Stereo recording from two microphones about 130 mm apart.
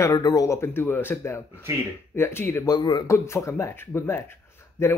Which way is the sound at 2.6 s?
35° left (ahead or behind).